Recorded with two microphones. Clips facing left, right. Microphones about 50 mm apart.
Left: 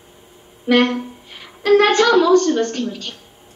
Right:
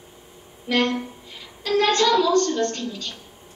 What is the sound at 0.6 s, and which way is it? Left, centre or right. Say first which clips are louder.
A woman's voice: left 6 dB; left.